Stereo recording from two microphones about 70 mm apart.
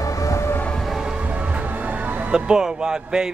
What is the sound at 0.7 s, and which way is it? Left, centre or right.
Train, centre.